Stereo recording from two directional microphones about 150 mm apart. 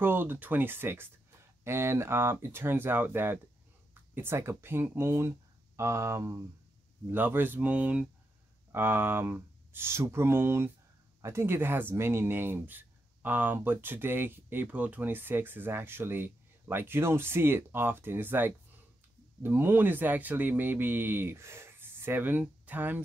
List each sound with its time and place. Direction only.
0.0 s speech: 15° right (ahead or behind)